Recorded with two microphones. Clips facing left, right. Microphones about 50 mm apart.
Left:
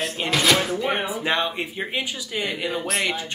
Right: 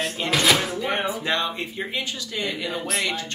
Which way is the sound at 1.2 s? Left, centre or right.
Centre.